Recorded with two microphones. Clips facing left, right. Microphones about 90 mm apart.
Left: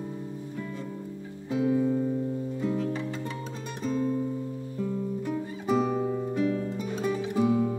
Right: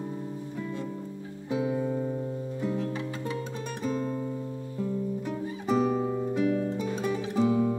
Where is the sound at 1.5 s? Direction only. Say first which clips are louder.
Left 3 dB; 15° right (ahead or behind).